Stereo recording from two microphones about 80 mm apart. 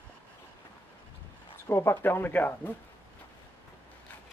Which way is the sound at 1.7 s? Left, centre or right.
Left.